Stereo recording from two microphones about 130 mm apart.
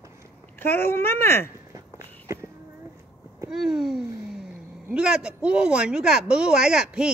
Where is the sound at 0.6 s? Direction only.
15° left (ahead or behind).